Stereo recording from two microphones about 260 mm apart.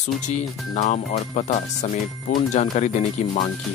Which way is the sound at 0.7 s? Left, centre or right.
Left.